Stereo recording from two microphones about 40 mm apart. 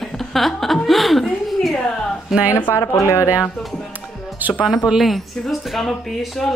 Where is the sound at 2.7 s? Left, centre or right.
Left.